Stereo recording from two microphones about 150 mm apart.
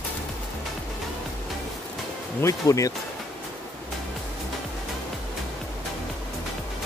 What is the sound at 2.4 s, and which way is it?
Speech, 20° left (ahead or behind).